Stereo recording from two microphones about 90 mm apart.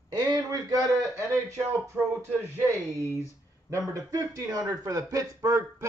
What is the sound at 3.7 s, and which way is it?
Speech, 35° right (ahead or behind).